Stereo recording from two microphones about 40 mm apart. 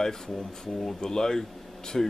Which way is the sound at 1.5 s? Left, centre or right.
Centre.